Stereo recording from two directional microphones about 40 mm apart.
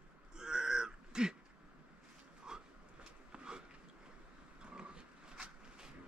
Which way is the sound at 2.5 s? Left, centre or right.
Centre.